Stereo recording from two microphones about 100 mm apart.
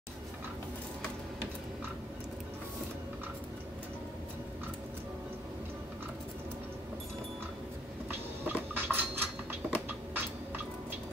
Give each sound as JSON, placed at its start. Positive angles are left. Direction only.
{"t": 8.1, "sound": "dishes", "side_deg": -20}